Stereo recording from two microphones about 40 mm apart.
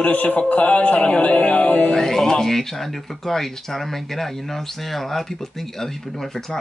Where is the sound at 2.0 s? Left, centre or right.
Centre.